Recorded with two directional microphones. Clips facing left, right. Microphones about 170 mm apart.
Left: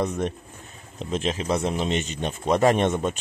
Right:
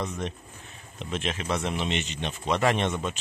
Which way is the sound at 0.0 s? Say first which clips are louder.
Left 6 dB; 55° left (ahead or behind).